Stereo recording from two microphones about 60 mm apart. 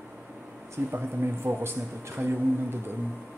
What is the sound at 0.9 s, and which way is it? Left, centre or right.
A man's voice, right.